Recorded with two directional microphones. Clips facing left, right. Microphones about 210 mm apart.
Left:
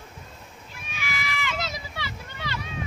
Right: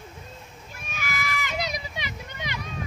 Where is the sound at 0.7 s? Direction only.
45° right (ahead or behind).